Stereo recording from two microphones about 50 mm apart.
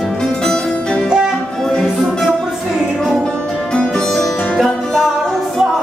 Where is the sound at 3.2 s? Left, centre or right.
Centre.